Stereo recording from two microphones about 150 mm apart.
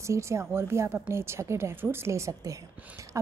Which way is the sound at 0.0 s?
20° right (ahead or behind).